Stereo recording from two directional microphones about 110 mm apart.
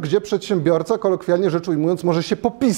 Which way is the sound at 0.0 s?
5° left (ahead or behind).